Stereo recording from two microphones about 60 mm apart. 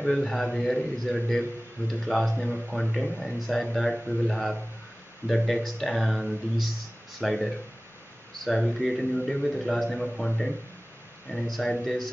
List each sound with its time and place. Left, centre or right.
0.0 s speech: centre